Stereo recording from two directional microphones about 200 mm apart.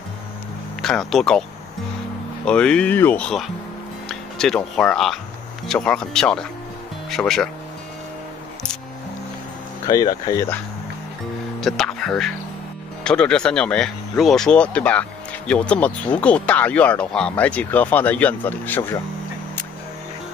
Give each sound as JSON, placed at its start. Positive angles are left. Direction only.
{"t": 0.8, "sound": "speech", "side_deg": 0}
{"t": 2.4, "sound": "speech", "side_deg": 5}
{"t": 9.8, "sound": "speech", "side_deg": 20}
{"t": 11.6, "sound": "speech", "side_deg": 0}